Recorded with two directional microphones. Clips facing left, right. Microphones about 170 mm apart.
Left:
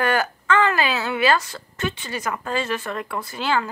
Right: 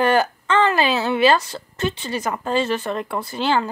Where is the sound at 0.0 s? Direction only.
30° right (ahead or behind).